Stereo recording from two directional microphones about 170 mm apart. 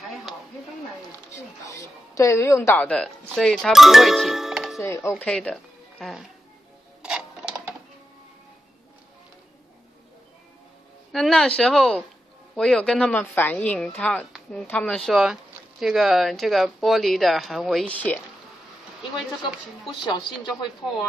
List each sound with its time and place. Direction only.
1.3 s a woman's voice: 15° left (ahead or behind); by 4.8 s centre (ahead or behind)
4.8 s speech: 15° left (ahead or behind)
5.1 s speech: 5° left (ahead or behind)
7.0 s music: 5° right (ahead or behind)
11.1 s a woman's voice: centre (ahead or behind)
19.5 s a woman's voice: centre (ahead or behind)
20.0 s speech: 25° left (ahead or behind)